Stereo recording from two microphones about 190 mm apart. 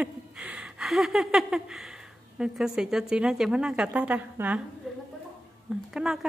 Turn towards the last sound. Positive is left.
turn(degrees=0)  # may be behind; listen again after turning